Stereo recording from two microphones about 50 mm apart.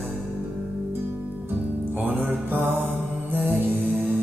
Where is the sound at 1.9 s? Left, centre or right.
Right.